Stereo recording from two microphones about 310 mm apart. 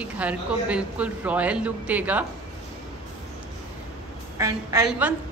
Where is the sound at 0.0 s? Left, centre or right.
Centre.